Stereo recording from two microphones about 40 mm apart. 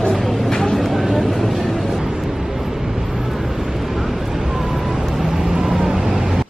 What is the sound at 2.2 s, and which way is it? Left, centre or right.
Vehicle, centre.